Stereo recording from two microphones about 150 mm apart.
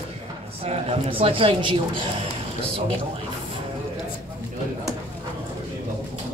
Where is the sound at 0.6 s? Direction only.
40° right (ahead or behind).